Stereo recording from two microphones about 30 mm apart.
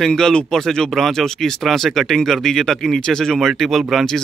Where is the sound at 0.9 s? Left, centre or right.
Centre.